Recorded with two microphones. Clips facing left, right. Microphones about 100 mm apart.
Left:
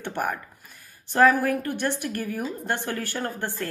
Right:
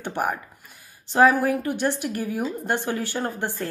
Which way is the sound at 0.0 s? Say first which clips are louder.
Right 2 dB; 15° right (ahead or behind).